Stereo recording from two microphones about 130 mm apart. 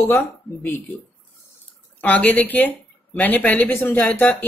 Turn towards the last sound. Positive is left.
turn(degrees=15)  # may be behind; listen again after turning